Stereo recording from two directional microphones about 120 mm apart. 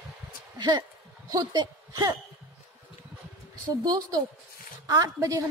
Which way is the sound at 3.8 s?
35° right (ahead or behind).